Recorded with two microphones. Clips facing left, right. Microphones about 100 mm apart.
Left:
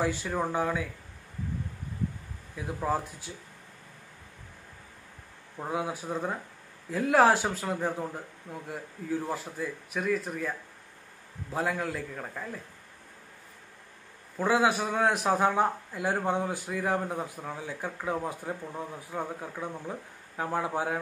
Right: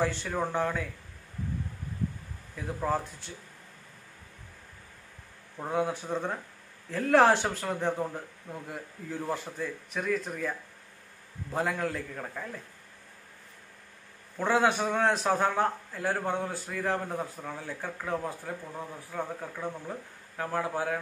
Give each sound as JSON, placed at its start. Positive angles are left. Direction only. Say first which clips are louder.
{"t": 0.0, "sound": "a man's voice", "louder": "even", "side_deg": 10}
{"t": 2.5, "sound": "a man's voice", "louder": "even", "side_deg": 10}
{"t": 5.6, "sound": "speech", "louder": "right 2 dB", "side_deg": 5}
{"t": 11.5, "sound": "speech", "louder": "even", "side_deg": 0}
{"t": 14.4, "sound": "a man's voice", "louder": "even", "side_deg": 5}